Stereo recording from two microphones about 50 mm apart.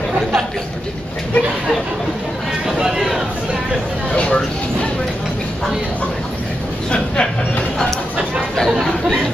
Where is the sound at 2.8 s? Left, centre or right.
Centre.